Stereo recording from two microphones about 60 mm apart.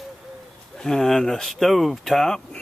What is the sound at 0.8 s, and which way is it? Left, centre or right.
Speech, centre.